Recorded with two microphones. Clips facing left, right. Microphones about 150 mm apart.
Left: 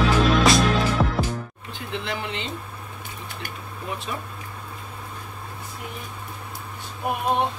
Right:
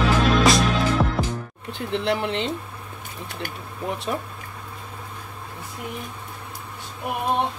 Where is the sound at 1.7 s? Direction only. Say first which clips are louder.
Right 7 dB; 70° right (ahead or behind).